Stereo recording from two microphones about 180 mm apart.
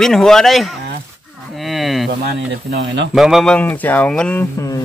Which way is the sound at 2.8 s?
80° right.